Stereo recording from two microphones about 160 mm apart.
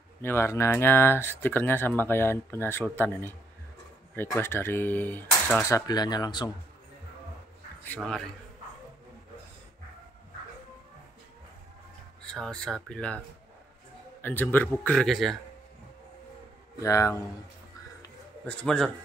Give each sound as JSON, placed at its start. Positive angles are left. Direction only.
{"t": 0.2, "sound": "speech", "side_deg": 15}
{"t": 4.4, "sound": "speech", "side_deg": 15}
{"t": 7.8, "sound": "speech", "side_deg": 5}
{"t": 12.3, "sound": "speech", "side_deg": 5}
{"t": 14.2, "sound": "speech", "side_deg": 10}
{"t": 16.8, "sound": "speech", "side_deg": 20}
{"t": 18.4, "sound": "speech", "side_deg": 5}